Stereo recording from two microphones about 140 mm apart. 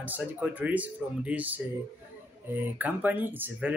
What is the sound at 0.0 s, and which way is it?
Speech, 10° right (ahead or behind).